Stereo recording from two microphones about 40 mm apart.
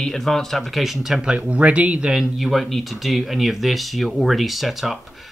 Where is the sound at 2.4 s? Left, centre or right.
Centre.